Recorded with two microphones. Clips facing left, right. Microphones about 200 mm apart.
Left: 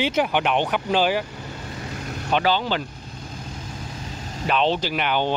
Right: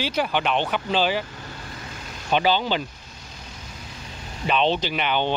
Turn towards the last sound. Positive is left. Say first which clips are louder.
# left 1 dB
turn(degrees=10)  # may be behind; listen again after turning